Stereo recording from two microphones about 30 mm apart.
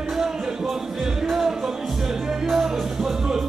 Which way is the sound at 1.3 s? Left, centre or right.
Centre.